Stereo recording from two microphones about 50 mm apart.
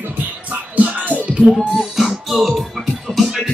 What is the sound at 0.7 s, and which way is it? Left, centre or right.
Music, right.